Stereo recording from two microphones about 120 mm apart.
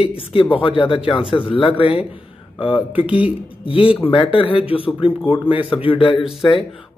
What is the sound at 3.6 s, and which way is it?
Speech, 50° left (ahead or behind).